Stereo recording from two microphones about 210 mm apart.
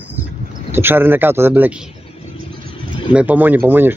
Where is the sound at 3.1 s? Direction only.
5° right (ahead or behind).